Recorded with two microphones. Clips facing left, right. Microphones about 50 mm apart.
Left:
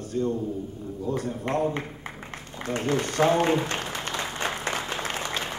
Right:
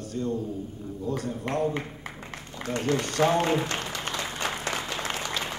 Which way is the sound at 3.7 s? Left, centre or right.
Left.